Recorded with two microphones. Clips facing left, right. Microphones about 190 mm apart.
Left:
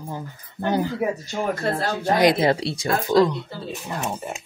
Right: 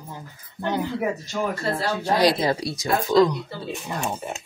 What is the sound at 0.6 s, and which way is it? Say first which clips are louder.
Speech: left 2 dB; 40° left (ahead or behind).